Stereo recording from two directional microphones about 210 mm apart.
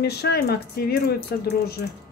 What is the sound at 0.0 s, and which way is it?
Speech, 50° left (ahead or behind).